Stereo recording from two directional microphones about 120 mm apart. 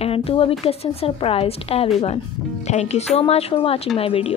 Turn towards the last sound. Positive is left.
turn(degrees=50)  # may be behind; listen again after turning